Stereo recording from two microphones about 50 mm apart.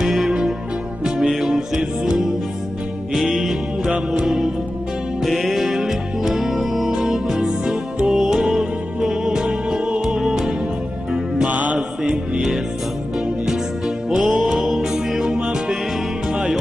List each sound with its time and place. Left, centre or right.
0.0 s music: centre
3.9 s music: centre
5.2 s music: centre
11.4 s mantra: right
12.0 s music: centre
15.3 s music: right